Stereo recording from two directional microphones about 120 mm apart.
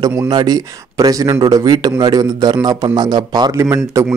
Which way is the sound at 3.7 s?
25° right (ahead or behind).